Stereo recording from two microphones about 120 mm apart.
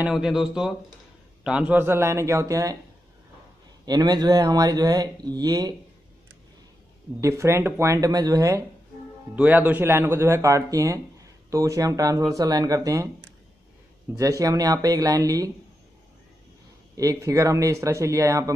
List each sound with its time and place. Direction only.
0.0 s speech: 5° right (ahead or behind); by 2.8 s 30° right (ahead or behind)
3.8 s speech: 35° right (ahead or behind)
7.2 s speech: 25° right (ahead or behind)
9.3 s speech: 15° right (ahead or behind)
14.1 s speech: 30° right (ahead or behind)
16.9 s speech: 30° right (ahead or behind)